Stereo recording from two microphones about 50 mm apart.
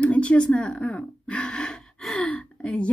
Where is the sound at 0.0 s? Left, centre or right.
Left.